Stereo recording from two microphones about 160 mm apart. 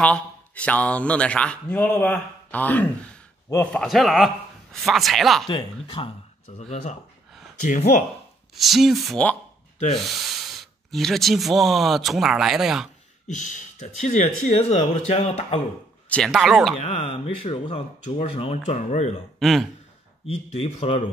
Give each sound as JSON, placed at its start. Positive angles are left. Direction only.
{"t": 0.0, "sound": "a man's voice", "side_deg": 10}
{"t": 3.8, "sound": "speech", "side_deg": 0}
{"t": 5.5, "sound": "speech", "side_deg": 30}
{"t": 6.7, "sound": "speech", "side_deg": 50}
{"t": 8.5, "sound": "speech", "side_deg": 0}
{"t": 13.3, "sound": "speech", "side_deg": 50}
{"t": 16.1, "sound": "speech", "side_deg": 0}
{"t": 16.8, "sound": "speech", "side_deg": 40}
{"t": 19.4, "sound": "speech", "side_deg": 0}
{"t": 20.2, "sound": "speech", "side_deg": 40}